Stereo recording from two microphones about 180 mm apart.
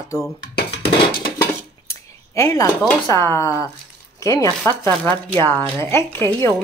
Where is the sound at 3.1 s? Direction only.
15° left (ahead or behind).